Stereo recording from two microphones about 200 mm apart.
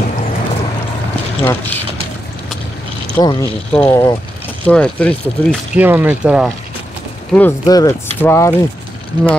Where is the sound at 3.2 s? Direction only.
20° left (ahead or behind).